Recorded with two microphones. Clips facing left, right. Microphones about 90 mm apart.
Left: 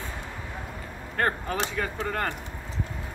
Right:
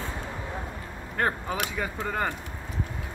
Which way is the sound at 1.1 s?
15° right (ahead or behind).